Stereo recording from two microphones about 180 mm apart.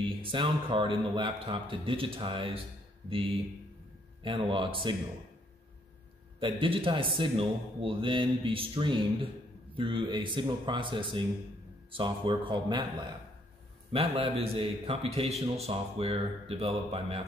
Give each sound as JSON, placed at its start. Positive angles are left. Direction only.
{"t": 0.1, "sound": "a man's voice", "side_deg": -30}
{"t": 6.4, "sound": "a man's voice", "side_deg": -30}
{"t": 13.9, "sound": "a man's voice", "side_deg": -30}